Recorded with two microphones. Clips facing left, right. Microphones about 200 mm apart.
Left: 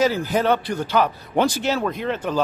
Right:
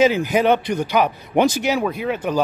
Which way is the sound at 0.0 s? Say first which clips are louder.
Right 4 dB; 20° right (ahead or behind).